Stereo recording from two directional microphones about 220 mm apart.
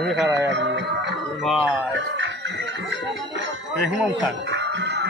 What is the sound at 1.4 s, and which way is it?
Speech, centre (ahead or behind).